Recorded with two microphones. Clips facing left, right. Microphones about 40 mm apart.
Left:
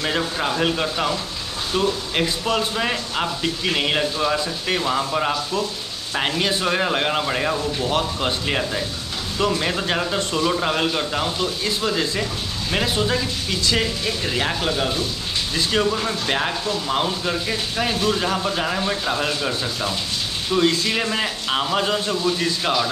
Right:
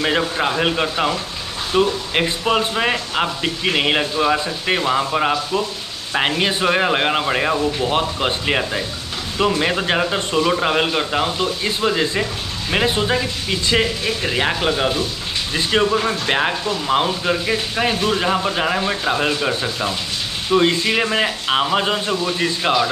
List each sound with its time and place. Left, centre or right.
0.0 s speech: right